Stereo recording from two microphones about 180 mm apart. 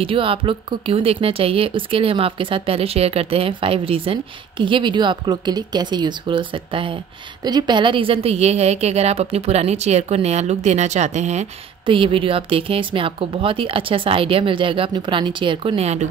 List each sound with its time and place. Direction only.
0.0 s a woman's voice: 30° right (ahead or behind)